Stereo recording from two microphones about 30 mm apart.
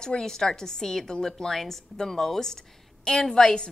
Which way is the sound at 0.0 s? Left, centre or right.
Left.